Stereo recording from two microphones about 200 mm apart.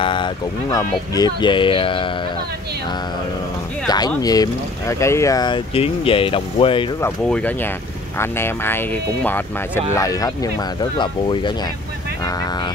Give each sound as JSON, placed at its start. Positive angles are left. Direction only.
{"t": 0.0, "sound": "speech", "side_deg": 25}
{"t": 3.8, "sound": "speech", "side_deg": 20}
{"t": 7.0, "sound": "speech", "side_deg": 5}